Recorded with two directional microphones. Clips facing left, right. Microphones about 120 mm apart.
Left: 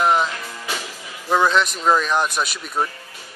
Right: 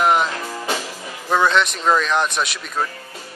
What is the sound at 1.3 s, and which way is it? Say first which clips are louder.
Speech: even; 5° left (ahead or behind).